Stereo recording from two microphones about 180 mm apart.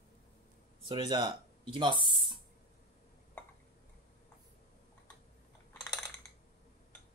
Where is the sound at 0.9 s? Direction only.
25° right (ahead or behind).